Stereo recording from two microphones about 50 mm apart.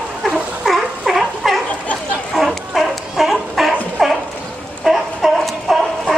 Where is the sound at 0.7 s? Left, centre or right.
Centre.